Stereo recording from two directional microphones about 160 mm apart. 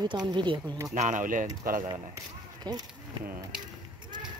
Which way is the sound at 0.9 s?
50° right (ahead or behind).